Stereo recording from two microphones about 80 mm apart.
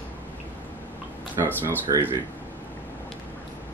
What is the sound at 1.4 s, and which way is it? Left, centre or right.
Speech, right.